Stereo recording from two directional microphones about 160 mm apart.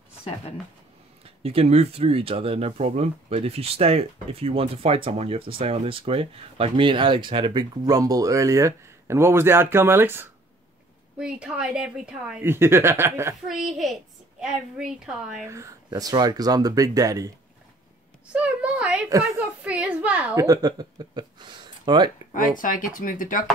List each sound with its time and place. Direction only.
1.4 s a woman's voice: 40° right (ahead or behind); by 13.4 s 15° right (ahead or behind)
13.5 s a woman's voice: centre (ahead or behind)
15.4 s speech: 20° right (ahead or behind)
18.3 s a woman's voice: 10° right (ahead or behind)
19.0 s speech: 20° right (ahead or behind)
19.4 s a woman's voice: 10° right (ahead or behind)
20.3 s speech: 25° right (ahead or behind)
22.3 s speech: 55° left (ahead or behind)